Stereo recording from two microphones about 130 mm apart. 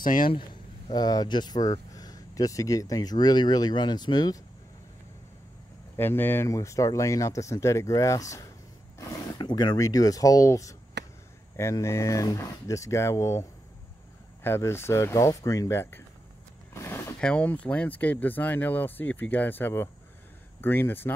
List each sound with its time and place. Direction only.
0.0 s a man's voice: 90° left
0.3 s speech: 35° left (ahead or behind)
5.9 s speech: 15° left (ahead or behind)
16.7 s a sound: 20° left (ahead or behind)
17.2 s speech: 10° left (ahead or behind)